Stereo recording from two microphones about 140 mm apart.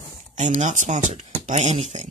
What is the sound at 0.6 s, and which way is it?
Speech, 60° right (ahead or behind).